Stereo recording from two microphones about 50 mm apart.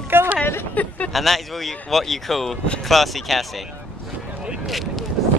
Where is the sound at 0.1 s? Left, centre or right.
Right.